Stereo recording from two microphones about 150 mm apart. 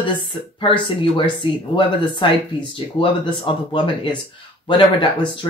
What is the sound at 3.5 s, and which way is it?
Speech, 35° left (ahead or behind).